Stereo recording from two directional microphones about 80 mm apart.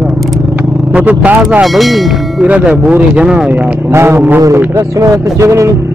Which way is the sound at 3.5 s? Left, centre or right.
Right.